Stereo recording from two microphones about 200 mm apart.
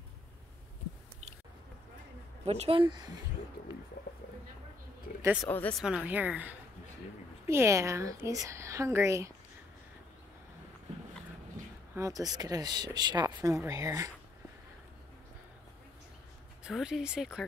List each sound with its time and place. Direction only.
2.4 s speech: 30° right (ahead or behind)
5.2 s speech: 5° right (ahead or behind)
5.5 s speech: 5° left (ahead or behind); by 9.3 s 15° right (ahead or behind)
11.9 s speech: 15° right (ahead or behind)
16.6 s speech: centre (ahead or behind)